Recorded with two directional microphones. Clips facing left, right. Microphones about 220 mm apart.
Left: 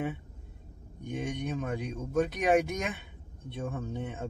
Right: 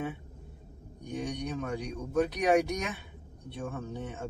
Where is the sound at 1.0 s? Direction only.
20° left (ahead or behind).